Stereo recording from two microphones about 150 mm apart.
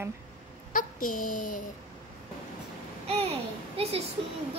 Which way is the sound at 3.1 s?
40° right (ahead or behind).